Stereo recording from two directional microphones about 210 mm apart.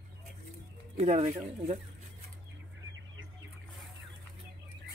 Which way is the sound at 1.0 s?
30° right (ahead or behind).